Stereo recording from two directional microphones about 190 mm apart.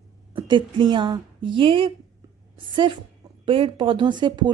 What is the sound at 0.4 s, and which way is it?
Speech, 25° right (ahead or behind).